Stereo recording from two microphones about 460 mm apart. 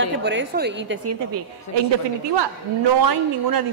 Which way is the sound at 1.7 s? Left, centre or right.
Left.